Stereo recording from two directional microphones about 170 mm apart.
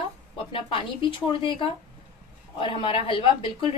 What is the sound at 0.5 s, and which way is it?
A woman's voice, 30° left (ahead or behind).